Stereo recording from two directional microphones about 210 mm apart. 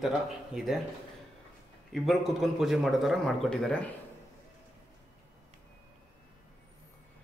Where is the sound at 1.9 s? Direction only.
Centre (ahead or behind).